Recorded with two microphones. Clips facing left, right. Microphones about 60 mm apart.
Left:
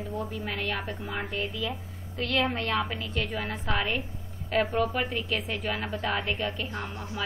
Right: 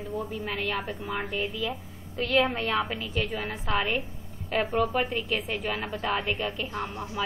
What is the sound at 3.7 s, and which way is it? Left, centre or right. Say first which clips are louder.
A woman's voice: right 2 dB; centre.